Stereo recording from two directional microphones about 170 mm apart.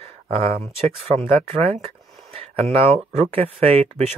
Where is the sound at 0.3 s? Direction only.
35° right (ahead or behind).